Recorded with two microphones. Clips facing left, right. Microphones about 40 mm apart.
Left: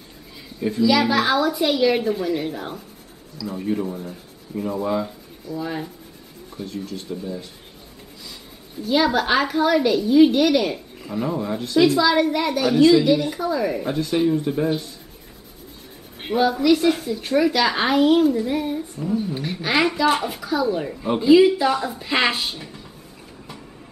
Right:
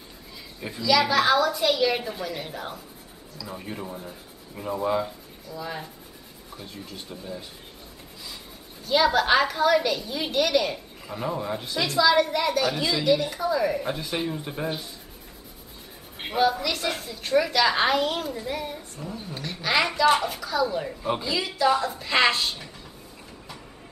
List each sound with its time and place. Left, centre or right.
0.6 s a woman's voice: centre
0.8 s a woman's voice: centre
5.5 s a woman's voice: centre
6.6 s rub: centre
8.8 s a woman's voice: centre
16.2 s a woman's voice: centre
21.3 s a woman's voice: centre